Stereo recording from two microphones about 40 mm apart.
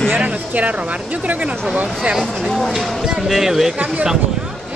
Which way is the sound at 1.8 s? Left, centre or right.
Right.